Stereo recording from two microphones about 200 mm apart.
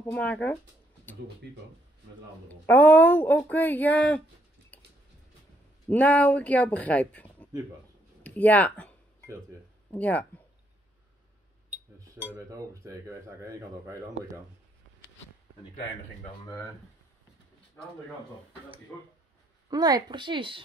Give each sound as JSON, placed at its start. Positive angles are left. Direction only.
{"t": 0.0, "sound": "speech", "side_deg": 10}
{"t": 2.4, "sound": "speech", "side_deg": 10}
{"t": 5.9, "sound": "speech", "side_deg": 5}
{"t": 9.9, "sound": "speech", "side_deg": 10}
{"t": 12.0, "sound": "cutlery", "side_deg": -15}
{"t": 19.7, "sound": "a woman's voice", "side_deg": -20}